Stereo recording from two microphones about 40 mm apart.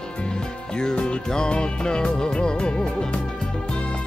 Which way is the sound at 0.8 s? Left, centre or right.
Left.